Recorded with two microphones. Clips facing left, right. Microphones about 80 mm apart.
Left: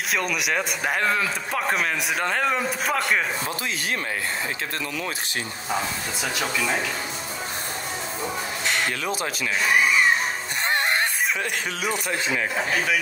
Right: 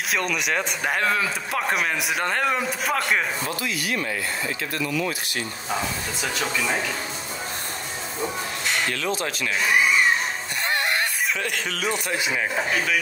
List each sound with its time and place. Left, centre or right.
0.1 s speech: centre
6.2 s speech: centre
9.0 s speech: centre
10.7 s a sound: left
11.7 s speech: centre